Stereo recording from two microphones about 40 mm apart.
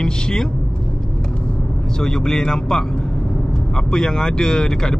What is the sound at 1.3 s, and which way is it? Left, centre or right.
Speech, left.